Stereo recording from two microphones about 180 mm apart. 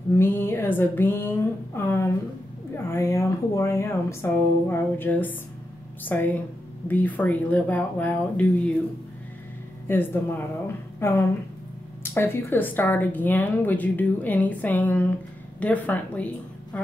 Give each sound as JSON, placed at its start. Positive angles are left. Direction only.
{"t": 0.2, "sound": "speech", "side_deg": 10}
{"t": 9.8, "sound": "speech", "side_deg": 10}